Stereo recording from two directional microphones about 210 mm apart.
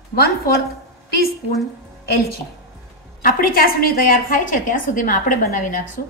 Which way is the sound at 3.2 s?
45° left (ahead or behind).